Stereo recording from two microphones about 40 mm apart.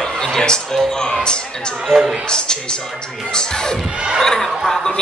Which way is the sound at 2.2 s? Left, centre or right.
Centre.